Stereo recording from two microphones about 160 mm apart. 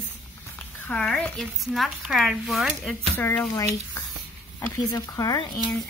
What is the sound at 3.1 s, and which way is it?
Speech, 10° left (ahead or behind).